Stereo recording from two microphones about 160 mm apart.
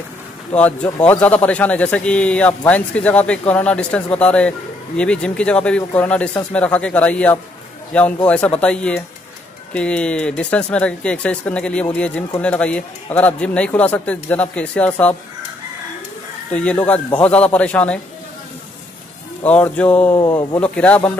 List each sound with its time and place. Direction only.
0.6 s speech: 10° left (ahead or behind)
16.5 s speech: 10° left (ahead or behind)
19.4 s speech: 10° left (ahead or behind)
20.1 s speech: 20° left (ahead or behind)
20.6 s speech: 10° left (ahead or behind)